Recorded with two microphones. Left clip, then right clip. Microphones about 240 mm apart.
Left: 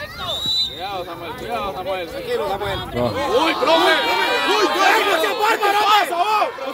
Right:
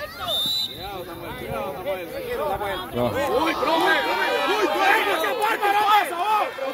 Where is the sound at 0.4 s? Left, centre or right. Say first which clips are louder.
Left 4 dB; centre.